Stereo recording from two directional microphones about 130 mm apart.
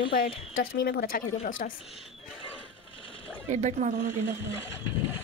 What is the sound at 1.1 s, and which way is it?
Speech, 90° left.